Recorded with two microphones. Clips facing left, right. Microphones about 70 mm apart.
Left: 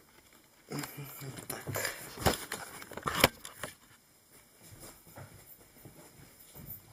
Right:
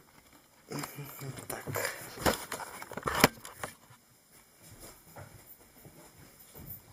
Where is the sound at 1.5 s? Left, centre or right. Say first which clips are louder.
Right 2 dB; centre.